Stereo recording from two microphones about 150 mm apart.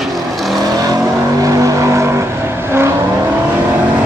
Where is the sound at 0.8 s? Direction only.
25° right (ahead or behind).